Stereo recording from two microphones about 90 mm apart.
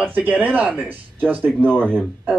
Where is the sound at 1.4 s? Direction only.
15° left (ahead or behind).